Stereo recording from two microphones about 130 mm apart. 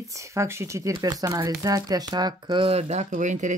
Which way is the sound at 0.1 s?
25° right (ahead or behind).